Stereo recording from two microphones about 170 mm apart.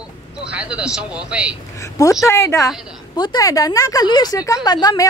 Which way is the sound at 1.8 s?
20° left (ahead or behind).